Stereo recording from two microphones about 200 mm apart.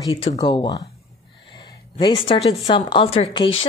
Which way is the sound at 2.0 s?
25° left (ahead or behind).